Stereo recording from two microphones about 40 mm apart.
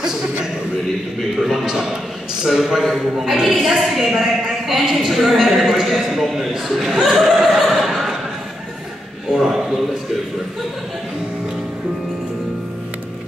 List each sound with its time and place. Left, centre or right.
0.0 s a sound: centre
2.4 s a man's voice: centre
9.3 s a woman's voice: centre